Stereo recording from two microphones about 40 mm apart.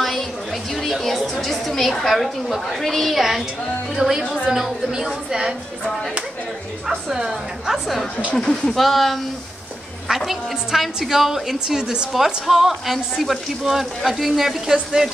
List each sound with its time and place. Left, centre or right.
1.0 s chatter: centre
1.4 s speech: centre
4.5 s a woman's voice: centre
7.1 s a woman's voice: centre
8.4 s speech: centre
8.7 s a woman's voice: centre
11.6 s a woman's voice: centre
12.1 s a woman's voice: centre